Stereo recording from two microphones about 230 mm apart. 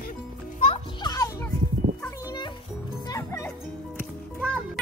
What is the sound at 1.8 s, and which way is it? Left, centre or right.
Music, right.